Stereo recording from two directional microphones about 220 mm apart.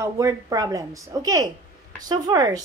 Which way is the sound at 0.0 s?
15° right (ahead or behind).